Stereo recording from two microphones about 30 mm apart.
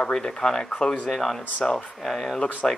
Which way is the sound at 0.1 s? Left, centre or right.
Centre.